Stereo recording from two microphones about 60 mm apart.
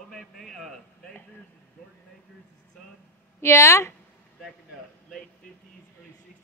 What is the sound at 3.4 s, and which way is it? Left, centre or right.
Speech, left.